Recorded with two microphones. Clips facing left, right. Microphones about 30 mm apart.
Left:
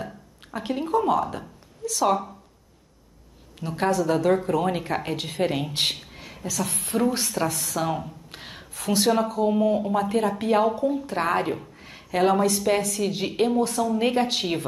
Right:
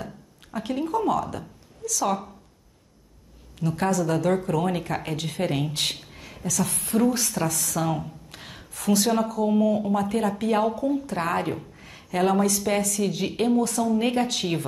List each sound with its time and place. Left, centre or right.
0.0 s a sound: centre
2.0 s speech: centre
3.6 s speech: left
4.3 s speech: centre
5.1 s speech: left
5.7 s a sound: left
6.8 s speech: left
11.4 s a woman's voice: centre